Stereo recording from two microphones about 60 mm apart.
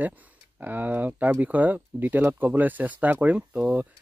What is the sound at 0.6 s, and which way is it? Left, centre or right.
Speech, right.